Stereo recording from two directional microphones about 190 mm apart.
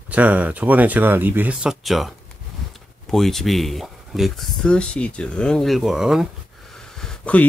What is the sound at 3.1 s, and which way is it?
Speech, centre (ahead or behind).